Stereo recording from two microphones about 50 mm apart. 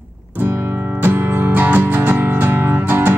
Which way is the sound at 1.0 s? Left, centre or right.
Right.